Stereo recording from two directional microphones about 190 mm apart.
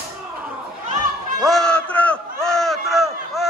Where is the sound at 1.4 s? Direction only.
Centre (ahead or behind).